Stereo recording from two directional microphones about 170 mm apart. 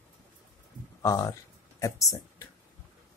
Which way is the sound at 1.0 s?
20° left (ahead or behind).